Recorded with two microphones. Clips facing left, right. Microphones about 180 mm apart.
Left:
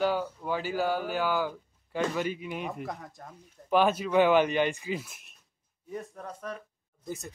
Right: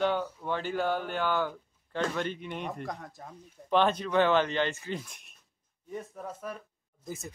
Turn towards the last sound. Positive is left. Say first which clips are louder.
# left 2 dB
turn(degrees=0)  # may be behind; listen again after turning